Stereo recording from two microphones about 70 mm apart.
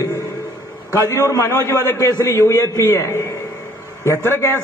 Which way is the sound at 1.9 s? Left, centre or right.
Left.